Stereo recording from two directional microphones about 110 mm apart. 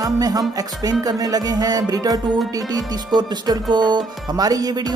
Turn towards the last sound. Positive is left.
turn(degrees=-35)  # may be behind; listen again after turning